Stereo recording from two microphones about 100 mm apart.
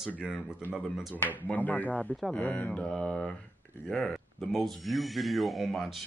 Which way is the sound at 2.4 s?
15° left (ahead or behind).